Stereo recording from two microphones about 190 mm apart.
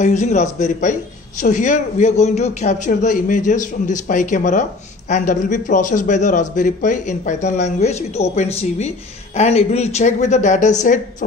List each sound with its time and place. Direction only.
0.0 s a man's voice: 40° left (ahead or behind)